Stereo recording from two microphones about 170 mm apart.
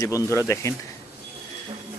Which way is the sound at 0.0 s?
20° left (ahead or behind).